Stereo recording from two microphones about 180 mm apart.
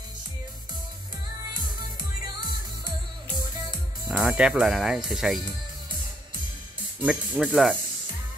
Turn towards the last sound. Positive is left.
turn(degrees=0)  # may be behind; listen again after turning